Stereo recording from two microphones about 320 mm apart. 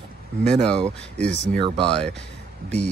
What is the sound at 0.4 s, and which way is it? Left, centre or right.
Speech, centre.